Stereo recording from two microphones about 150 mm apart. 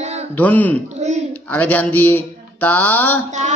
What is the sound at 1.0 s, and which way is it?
Speech, 45° right (ahead or behind).